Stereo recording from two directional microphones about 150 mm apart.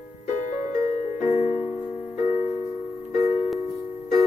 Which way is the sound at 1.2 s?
50° left (ahead or behind).